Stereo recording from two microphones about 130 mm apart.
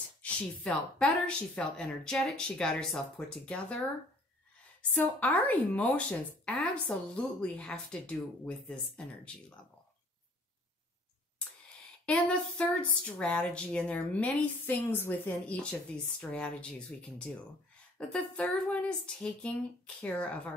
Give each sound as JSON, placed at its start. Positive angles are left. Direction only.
{"t": 0.2, "sound": "speech", "side_deg": 10}
{"t": 4.9, "sound": "speech", "side_deg": 15}
{"t": 12.1, "sound": "speech", "side_deg": 10}
{"t": 17.9, "sound": "speech", "side_deg": 10}